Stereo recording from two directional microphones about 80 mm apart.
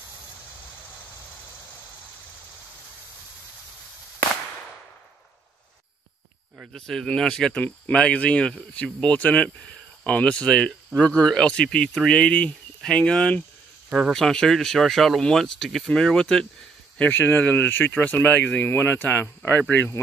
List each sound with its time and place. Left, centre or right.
6.7 s speech: centre
13.8 s speech: centre
14.1 s speech: centre
17.0 s speech: left
18.7 s speech: left